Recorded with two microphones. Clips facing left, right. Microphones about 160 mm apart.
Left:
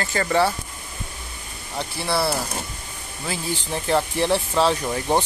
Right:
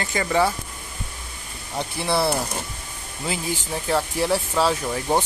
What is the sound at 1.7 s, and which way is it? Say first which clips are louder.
Speech: right 1 dB; 15° right (ahead or behind).